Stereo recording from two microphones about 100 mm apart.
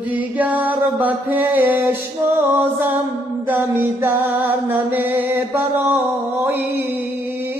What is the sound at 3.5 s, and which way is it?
Music, 15° right (ahead or behind).